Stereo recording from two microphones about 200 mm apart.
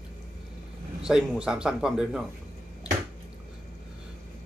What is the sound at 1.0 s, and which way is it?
Speech, 5° right (ahead or behind).